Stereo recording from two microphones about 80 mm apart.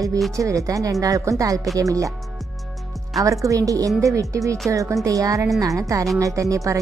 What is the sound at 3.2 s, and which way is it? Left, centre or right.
Speech, right.